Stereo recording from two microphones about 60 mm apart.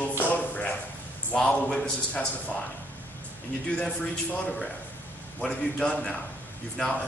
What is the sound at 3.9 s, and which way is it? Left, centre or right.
A man's voice, left.